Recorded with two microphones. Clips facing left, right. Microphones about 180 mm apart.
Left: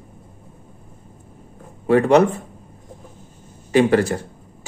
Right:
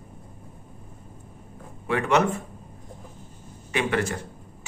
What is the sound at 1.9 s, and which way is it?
Speech, 35° left (ahead or behind).